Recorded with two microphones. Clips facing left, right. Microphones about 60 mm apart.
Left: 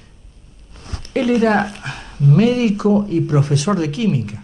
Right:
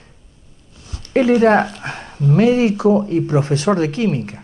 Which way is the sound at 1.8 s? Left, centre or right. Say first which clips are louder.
Right 2 dB; right.